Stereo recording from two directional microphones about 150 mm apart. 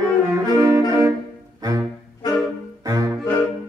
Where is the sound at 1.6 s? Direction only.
25° right (ahead or behind).